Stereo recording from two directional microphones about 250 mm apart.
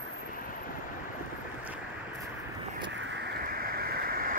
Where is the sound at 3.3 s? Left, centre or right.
Right.